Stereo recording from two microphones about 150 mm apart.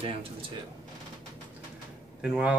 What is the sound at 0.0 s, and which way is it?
Speech, 40° right (ahead or behind).